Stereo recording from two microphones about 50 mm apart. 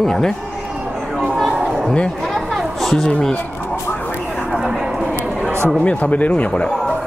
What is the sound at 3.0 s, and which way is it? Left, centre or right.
Speech, centre.